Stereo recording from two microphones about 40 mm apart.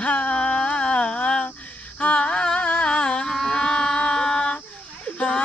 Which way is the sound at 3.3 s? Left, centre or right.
Centre.